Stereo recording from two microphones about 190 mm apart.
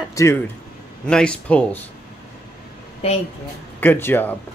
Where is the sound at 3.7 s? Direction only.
10° left (ahead or behind).